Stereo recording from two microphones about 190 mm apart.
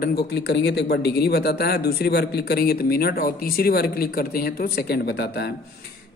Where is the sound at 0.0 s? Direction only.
55° left (ahead or behind).